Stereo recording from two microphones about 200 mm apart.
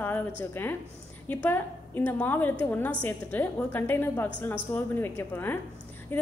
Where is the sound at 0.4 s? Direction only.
10° left (ahead or behind).